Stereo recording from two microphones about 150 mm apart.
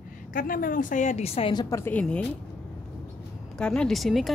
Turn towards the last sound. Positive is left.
turn(degrees=0)  # may be behind; listen again after turning